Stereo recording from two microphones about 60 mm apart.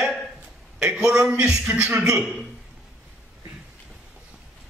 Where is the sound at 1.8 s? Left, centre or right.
Right.